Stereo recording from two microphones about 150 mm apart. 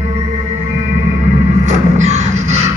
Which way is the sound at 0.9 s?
50° right (ahead or behind).